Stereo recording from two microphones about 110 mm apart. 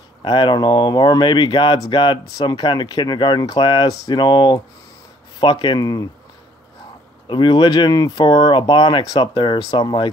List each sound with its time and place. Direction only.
0.2 s speech: 40° left (ahead or behind)
7.2 s speech: 45° left (ahead or behind)